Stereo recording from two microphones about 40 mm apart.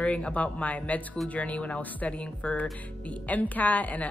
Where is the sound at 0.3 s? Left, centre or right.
Left.